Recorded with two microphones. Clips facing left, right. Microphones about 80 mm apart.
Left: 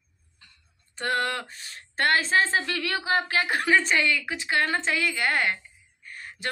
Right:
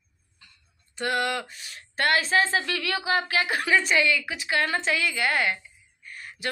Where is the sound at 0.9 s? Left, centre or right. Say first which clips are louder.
Right 1 dB; left.